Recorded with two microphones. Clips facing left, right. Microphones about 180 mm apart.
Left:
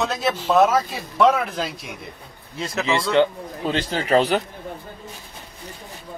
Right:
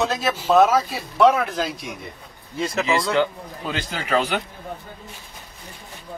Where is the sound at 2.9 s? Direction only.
30° left (ahead or behind).